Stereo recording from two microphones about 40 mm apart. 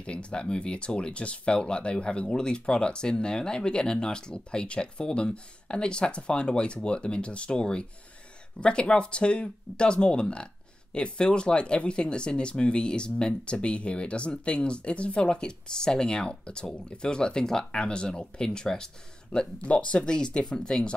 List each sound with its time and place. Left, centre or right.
0.0 s speech: left
19.6 s speech: left